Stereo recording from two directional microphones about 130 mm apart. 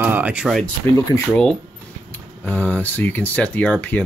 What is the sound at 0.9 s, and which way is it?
Speech, 25° left (ahead or behind).